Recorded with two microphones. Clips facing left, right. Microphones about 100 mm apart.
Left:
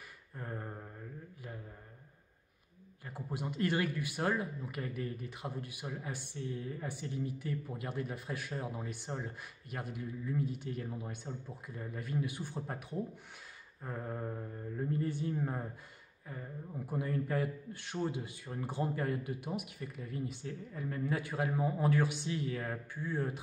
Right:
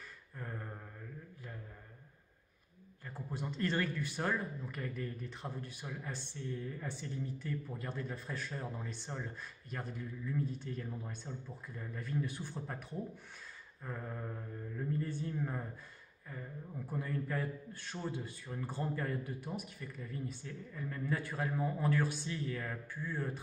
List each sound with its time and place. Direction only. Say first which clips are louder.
0.4 s mantra: left 2 dB; 20° left (ahead or behind)
3.1 s speech: left 2 dB; 15° left (ahead or behind)
13.8 s mantra: left 3 dB; 25° left (ahead or behind)
15.0 s speech: left 4 dB; 15° left (ahead or behind)
16.8 s speech: left 3 dB; 15° left (ahead or behind)